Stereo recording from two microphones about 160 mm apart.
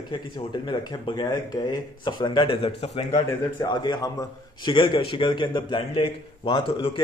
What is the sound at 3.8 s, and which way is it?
A man's voice, 25° left (ahead or behind).